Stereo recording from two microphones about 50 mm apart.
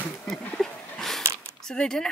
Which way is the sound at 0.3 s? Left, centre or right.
Centre.